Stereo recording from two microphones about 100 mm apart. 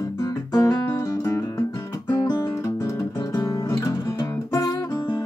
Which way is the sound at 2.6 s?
35° left (ahead or behind).